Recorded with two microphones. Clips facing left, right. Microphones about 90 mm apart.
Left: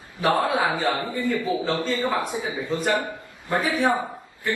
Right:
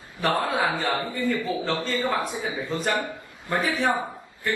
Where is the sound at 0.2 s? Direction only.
20° left (ahead or behind).